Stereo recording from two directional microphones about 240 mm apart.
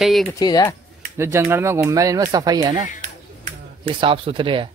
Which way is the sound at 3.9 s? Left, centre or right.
Right.